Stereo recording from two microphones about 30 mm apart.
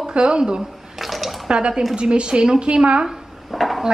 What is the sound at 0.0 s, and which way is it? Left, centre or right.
Speech, right.